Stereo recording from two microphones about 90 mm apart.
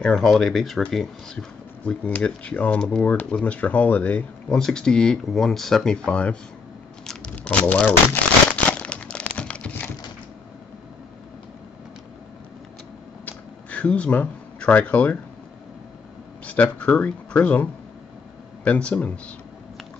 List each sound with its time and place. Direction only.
0.0 s speech: 5° left (ahead or behind)
1.9 s speech: 15° left (ahead or behind)
4.6 s speech: 5° left (ahead or behind)
7.1 s crumpling: 15° left (ahead or behind)
13.2 s a sound: 15° left (ahead or behind)
16.4 s speech: 15° left (ahead or behind)